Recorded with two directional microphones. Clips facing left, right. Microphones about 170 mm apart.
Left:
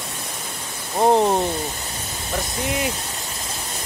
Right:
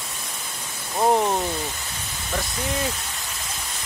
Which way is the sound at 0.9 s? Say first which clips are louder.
Left 3 dB; 25° left (ahead or behind).